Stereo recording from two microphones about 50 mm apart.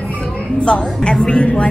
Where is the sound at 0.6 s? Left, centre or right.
Centre.